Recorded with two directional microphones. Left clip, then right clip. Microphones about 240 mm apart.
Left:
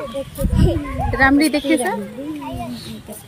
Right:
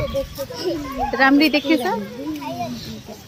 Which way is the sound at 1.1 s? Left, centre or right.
Centre.